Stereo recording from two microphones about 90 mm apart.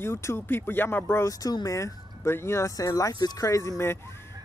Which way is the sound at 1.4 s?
40° left (ahead or behind).